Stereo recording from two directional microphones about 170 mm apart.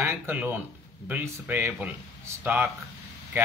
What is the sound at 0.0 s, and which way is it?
Speech, 10° right (ahead or behind).